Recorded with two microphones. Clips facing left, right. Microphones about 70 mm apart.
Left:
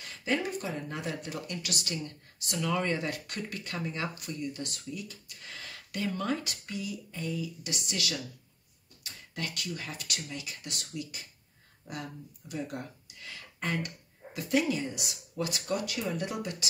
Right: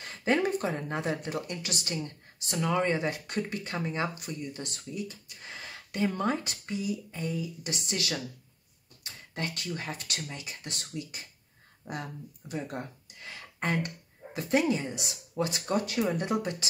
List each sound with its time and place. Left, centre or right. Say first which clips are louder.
0.0 s speech: right 4 dB; right
9.3 s speech: right 2 dB; right